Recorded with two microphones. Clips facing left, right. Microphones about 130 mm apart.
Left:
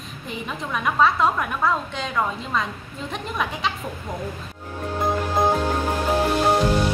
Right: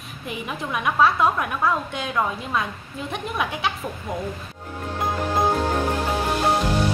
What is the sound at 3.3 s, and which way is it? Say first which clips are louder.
Speech: even; 5° right (ahead or behind).